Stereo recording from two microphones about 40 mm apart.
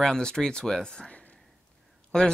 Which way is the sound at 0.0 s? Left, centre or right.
Centre.